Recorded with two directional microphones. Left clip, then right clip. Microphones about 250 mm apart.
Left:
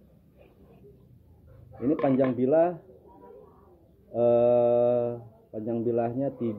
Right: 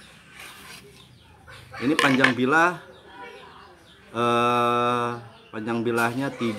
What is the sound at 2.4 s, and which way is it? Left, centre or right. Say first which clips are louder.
Speech: right 3 dB; right.